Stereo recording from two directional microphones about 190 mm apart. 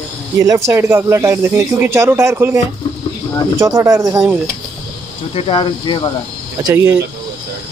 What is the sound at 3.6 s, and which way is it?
Speech, 15° right (ahead or behind).